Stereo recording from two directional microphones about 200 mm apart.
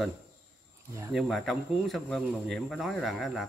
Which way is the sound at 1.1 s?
Centre (ahead or behind).